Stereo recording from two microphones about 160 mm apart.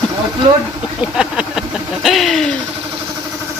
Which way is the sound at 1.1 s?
5° right (ahead or behind).